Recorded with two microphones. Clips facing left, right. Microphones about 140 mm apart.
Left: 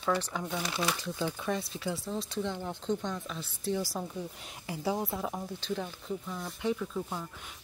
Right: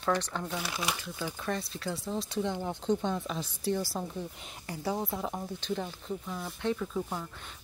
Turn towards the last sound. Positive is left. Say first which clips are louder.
# right 1 dB
turn(degrees=0)  # may be behind; listen again after turning